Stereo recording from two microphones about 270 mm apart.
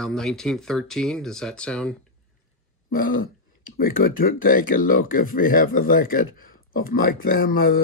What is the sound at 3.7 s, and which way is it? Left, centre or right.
Speech, left.